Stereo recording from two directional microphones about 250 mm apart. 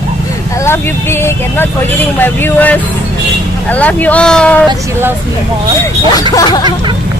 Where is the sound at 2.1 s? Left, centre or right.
Centre.